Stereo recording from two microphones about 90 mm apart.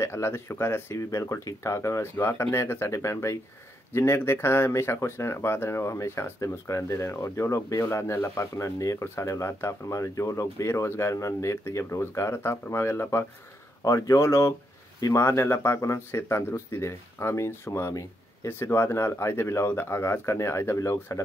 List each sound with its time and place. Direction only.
0.0 s speech: 30° left (ahead or behind)